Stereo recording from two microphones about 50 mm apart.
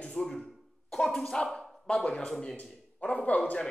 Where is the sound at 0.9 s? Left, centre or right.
Centre; by 3.5 s left.